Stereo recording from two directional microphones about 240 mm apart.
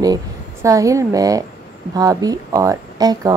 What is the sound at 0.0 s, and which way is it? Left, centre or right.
Speech, centre.